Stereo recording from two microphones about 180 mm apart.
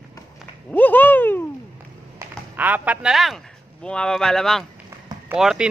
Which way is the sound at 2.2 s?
15° right (ahead or behind).